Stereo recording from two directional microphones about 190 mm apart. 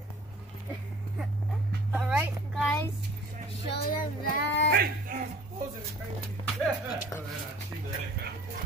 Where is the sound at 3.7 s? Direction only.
50° left (ahead or behind).